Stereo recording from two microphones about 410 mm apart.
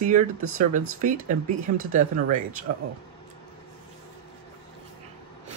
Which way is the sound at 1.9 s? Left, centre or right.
Centre.